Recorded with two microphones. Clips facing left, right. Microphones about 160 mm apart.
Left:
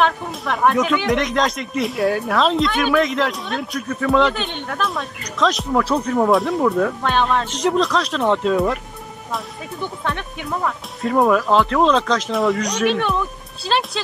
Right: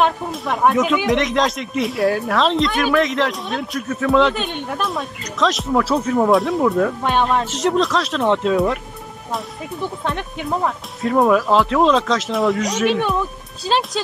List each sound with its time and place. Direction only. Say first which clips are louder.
0.0 s a sound: right 1 dB; centre (ahead or behind)
0.7 s speech: right 1 dB; centre (ahead or behind)
7.0 s speech: right 1 dB; 15° right (ahead or behind)
10.0 s speech: right 2 dB; 30° right (ahead or behind)
11.0 s speech: right 1 dB; centre (ahead or behind)